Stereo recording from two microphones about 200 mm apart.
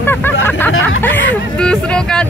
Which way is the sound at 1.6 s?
5° left (ahead or behind).